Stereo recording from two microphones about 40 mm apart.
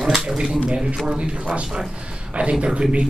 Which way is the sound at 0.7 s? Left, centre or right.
Right.